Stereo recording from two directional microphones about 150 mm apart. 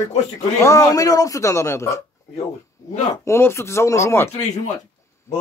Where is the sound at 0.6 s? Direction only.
20° left (ahead or behind).